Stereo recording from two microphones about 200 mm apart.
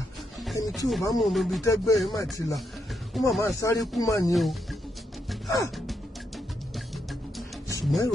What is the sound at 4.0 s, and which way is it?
Speech, 15° left (ahead or behind).